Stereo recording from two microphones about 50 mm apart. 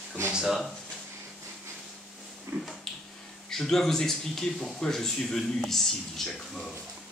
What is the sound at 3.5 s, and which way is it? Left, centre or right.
A man's voice, centre.